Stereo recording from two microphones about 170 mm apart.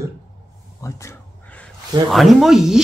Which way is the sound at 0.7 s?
15° left (ahead or behind).